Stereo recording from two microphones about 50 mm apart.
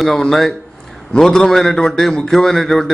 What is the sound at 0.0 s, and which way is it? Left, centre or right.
A man's voice, centre.